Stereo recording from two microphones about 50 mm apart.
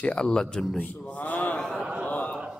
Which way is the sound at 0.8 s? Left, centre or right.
Left.